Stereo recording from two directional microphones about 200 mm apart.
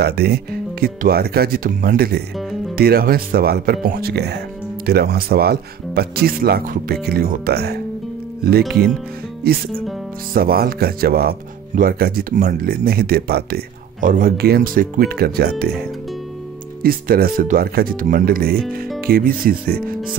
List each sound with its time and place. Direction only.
0.0 s speech: 55° right (ahead or behind)
9.5 s speech: 50° right (ahead or behind)